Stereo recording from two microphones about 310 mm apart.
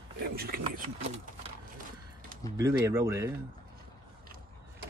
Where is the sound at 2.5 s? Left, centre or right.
Centre.